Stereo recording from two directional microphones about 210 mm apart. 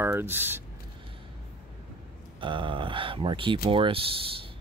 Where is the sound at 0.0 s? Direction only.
10° right (ahead or behind).